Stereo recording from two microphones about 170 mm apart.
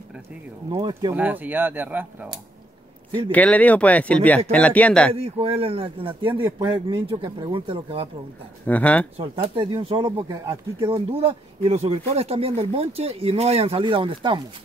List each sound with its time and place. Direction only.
0.7 s speech: 25° right (ahead or behind)
1.1 s speech: 10° right (ahead or behind)
3.3 s speech: 10° left (ahead or behind)
5.1 s speech: 35° right (ahead or behind)
8.6 s speech: 10° left (ahead or behind)
9.1 s speech: 35° right (ahead or behind)